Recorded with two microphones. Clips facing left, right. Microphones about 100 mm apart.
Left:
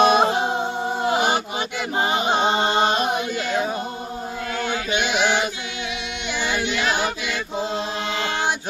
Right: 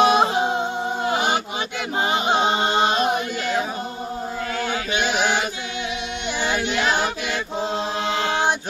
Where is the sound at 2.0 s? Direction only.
20° right (ahead or behind).